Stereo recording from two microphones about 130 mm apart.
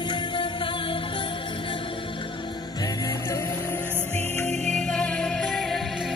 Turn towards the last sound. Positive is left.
turn(degrees=0)  # may be behind; listen again after turning